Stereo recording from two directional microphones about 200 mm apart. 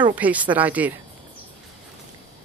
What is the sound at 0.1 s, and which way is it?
Speech, 5° right (ahead or behind).